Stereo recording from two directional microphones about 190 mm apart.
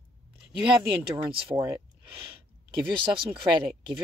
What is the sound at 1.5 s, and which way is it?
Speech, 10° right (ahead or behind).